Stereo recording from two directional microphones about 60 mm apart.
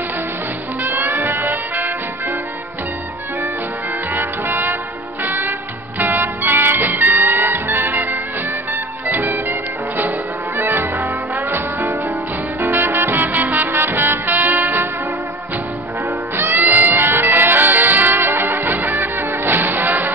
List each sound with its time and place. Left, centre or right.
0.8 s music: right
4.1 s music: right
16.3 s music: right